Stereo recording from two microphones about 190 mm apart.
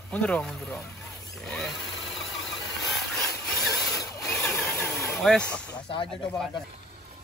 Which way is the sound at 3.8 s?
15° left (ahead or behind).